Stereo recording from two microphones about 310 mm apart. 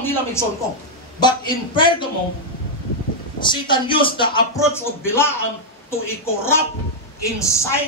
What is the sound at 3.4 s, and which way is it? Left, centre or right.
Speech, centre.